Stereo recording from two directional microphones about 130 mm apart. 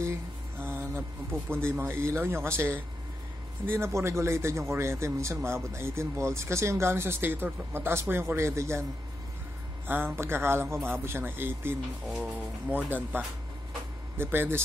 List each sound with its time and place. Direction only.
0.6 s a sound: 15° right (ahead or behind)
1.5 s a man's voice: 20° right (ahead or behind)
9.8 s a man's voice: 15° right (ahead or behind)
12.7 s a man's voice: 15° right (ahead or behind)